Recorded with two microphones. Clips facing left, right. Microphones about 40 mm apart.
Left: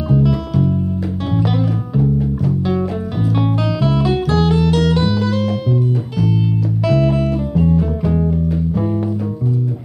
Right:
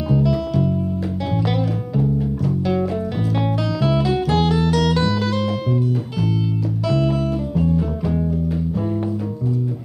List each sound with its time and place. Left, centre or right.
0.1 s music: centre
5.2 s music: centre
7.0 s music: left
7.5 s music: centre